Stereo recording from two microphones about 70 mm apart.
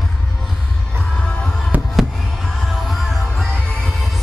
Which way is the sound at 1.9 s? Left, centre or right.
Centre.